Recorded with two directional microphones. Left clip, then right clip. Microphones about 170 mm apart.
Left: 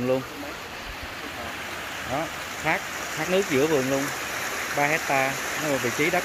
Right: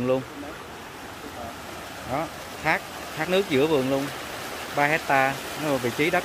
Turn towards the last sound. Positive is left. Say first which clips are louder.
# even
turn(degrees=-10)  # may be behind; listen again after turning